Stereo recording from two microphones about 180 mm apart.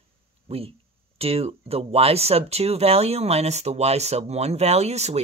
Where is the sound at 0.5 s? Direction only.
35° right (ahead or behind).